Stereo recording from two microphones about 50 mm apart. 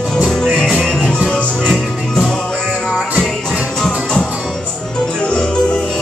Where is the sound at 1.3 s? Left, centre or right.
Left.